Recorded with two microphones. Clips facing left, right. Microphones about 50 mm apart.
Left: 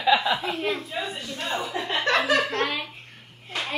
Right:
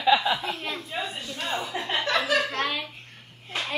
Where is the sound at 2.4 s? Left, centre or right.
Centre.